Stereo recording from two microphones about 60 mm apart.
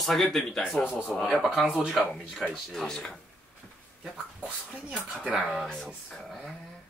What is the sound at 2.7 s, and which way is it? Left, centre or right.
Speech, centre.